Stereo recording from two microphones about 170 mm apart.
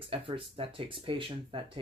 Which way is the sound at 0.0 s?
30° right (ahead or behind).